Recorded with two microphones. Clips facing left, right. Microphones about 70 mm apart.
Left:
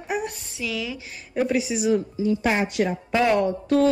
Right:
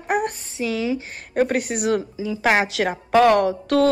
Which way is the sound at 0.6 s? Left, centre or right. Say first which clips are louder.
Right 7 dB; right.